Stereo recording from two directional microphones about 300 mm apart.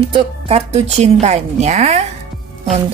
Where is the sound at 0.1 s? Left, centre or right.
Centre.